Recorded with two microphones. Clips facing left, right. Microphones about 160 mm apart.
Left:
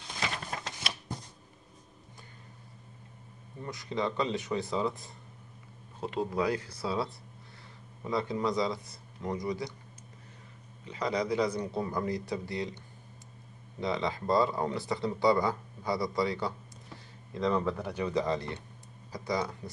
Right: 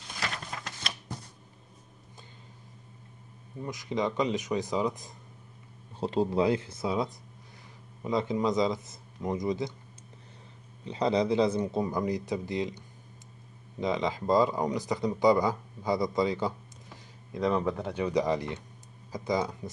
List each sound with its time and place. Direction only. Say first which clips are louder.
3.6 s speech: right 2 dB; 15° right (ahead or behind)
5.9 s speech: right 5 dB; 30° right (ahead or behind)
10.9 s speech: right 5 dB; 30° right (ahead or behind)
13.7 s speech: right 3 dB; 20° right (ahead or behind)